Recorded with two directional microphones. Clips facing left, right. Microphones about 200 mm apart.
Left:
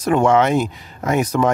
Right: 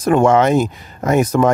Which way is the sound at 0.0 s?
50° right (ahead or behind).